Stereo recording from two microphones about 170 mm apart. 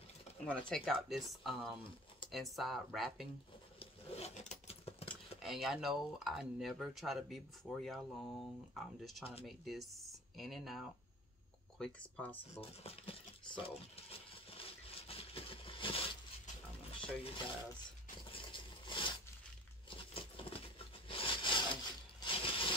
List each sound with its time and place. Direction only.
0.5 s speech: 5° left (ahead or behind)
3.8 s rub: 35° left (ahead or behind)
5.4 s speech: centre (ahead or behind)
9.2 s speech: 35° left (ahead or behind)
9.5 s speech: centre (ahead or behind)
11.8 s speech: 10° left (ahead or behind)
12.5 s a sound: 35° left (ahead or behind)
17.0 s speech: 30° left (ahead or behind)
18.3 s a sound: 30° left (ahead or behind)